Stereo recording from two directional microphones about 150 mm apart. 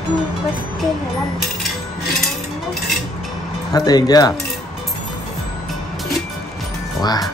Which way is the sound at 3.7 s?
25° left (ahead or behind).